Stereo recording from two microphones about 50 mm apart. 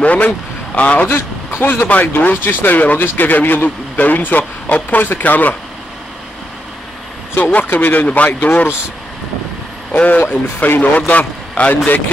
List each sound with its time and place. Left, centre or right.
0.0 s speech: left
1.0 s a man's voice: left
7.3 s a man's voice: left
10.0 s a man's voice: left